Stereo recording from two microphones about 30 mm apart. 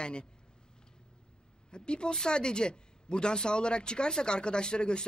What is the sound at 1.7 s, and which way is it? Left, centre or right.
A woman's voice, left.